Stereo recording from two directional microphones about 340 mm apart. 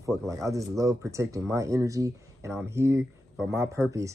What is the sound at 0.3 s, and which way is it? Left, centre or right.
Speech, centre.